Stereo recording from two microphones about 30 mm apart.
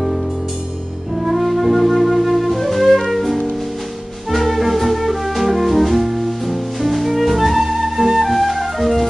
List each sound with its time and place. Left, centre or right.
1.3 s flute: centre
3.1 s music: centre